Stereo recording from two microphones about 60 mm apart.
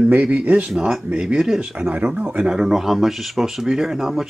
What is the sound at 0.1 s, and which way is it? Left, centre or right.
Speech, right.